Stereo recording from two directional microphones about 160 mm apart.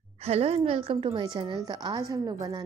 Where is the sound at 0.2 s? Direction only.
40° right (ahead or behind).